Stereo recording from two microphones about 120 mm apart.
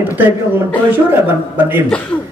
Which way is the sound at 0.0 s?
15° right (ahead or behind).